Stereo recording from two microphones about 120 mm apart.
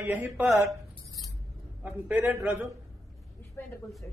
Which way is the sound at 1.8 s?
15° right (ahead or behind).